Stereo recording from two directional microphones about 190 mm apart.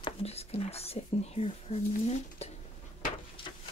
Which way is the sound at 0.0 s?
35° left (ahead or behind).